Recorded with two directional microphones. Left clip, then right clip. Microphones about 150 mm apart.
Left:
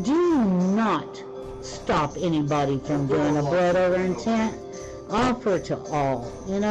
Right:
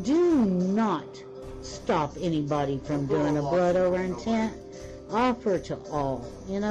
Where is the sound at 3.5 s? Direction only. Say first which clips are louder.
Left 2 dB; 20° right (ahead or behind).